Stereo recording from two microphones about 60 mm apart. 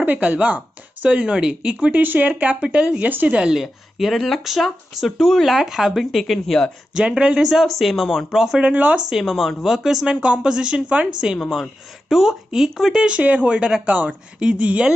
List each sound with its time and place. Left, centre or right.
0.0 s speech: right
3.1 s a woman's voice: right
3.3 s speech: centre
3.6 s speech: centre
6.9 s speech: centre
10.0 s speech: centre
13.2 s speech: right